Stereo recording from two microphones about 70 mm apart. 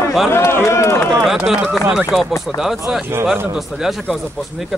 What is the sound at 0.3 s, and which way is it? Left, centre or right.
Run, left.